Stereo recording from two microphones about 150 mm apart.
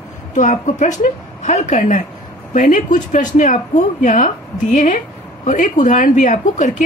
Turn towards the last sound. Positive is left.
turn(degrees=55)  # may be behind; listen again after turning